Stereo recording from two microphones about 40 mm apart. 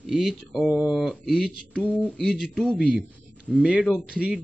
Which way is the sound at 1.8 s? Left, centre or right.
Left.